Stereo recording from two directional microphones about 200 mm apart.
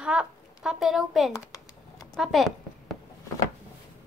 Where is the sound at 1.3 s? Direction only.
15° left (ahead or behind).